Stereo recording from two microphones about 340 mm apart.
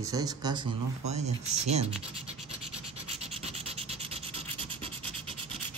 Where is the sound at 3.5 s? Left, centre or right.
Centre.